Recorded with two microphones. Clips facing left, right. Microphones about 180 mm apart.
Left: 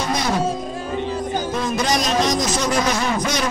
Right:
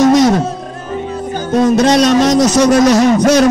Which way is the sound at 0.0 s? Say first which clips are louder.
Right 15 dB; 90° right.